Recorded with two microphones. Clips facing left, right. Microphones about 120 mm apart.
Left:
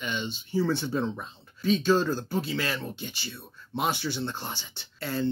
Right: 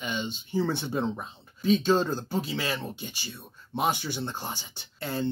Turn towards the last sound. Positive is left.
turn(degrees=-20)  # may be behind; listen again after turning